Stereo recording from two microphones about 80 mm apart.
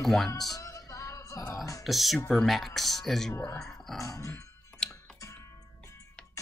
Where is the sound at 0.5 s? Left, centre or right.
Left.